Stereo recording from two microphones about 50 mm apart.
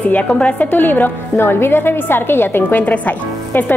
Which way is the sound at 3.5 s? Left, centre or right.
Left.